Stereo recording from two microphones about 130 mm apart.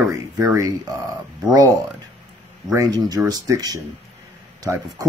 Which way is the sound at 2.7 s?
25° right (ahead or behind).